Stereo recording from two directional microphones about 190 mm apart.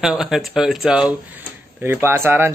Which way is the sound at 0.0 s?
Centre (ahead or behind).